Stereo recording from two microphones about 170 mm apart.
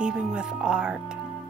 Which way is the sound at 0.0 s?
5° right (ahead or behind).